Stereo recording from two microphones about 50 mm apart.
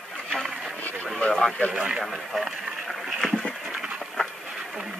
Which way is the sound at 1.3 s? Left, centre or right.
Centre.